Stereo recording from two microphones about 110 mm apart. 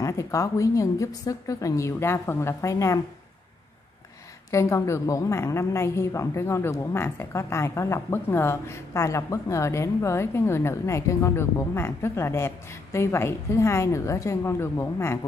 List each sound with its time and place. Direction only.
0.0 s a woman's voice: 30° left (ahead or behind)
4.5 s a woman's voice: 25° left (ahead or behind)